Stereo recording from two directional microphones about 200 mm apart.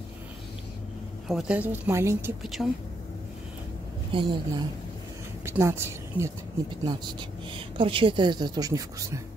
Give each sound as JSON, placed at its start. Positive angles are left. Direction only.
{"t": 1.3, "sound": "speech", "side_deg": -5}
{"t": 2.6, "sound": "a woman's voice", "side_deg": 0}
{"t": 4.1, "sound": "speech", "side_deg": -25}
{"t": 5.4, "sound": "a woman's voice", "side_deg": -15}